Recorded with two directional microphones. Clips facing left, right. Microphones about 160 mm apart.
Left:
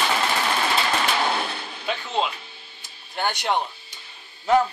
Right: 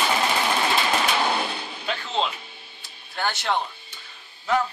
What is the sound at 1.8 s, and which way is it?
Speech, 15° left (ahead or behind).